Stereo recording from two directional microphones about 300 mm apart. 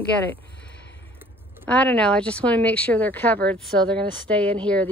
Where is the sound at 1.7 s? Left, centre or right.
Centre.